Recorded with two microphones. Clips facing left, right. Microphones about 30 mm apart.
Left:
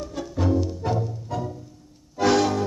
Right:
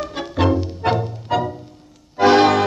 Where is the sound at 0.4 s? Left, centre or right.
Right.